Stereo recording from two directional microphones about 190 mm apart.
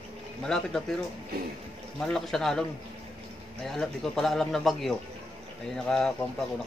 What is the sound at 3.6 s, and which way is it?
Speech, 5° left (ahead or behind).